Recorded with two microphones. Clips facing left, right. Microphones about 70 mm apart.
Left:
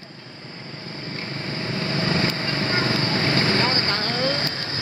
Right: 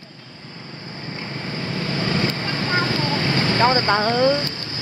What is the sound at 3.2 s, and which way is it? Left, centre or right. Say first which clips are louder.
Boat: even; left.